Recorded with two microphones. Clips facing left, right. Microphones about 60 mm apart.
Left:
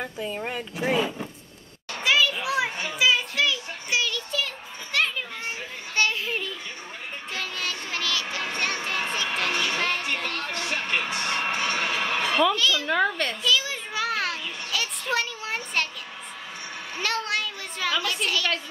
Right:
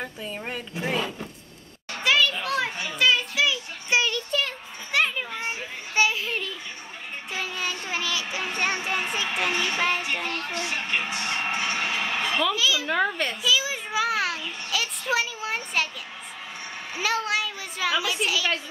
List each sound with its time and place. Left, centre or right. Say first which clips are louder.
0.4 s speech: even; centre
2.0 s children playing: even; centre
2.9 s child singing: right 2 dB; centre
3.9 s a sound: right 3 dB; right
4.9 s children playing: right 2 dB; centre
6.2 s a sound: even; centre
7.3 s child singing: right 2 dB; centre
8.5 s a sound: right 2 dB; centre
9.8 s music: right 1 dB; centre
10.7 s music: left 2 dB; left
12.5 s a sound: left 1 dB; centre
16.9 s a child's voice: right 2 dB; centre